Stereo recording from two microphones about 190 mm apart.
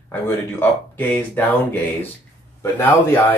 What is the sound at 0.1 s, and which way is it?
Speech, 10° left (ahead or behind).